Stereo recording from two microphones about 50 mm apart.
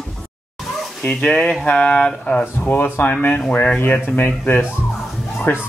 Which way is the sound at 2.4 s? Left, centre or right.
Left.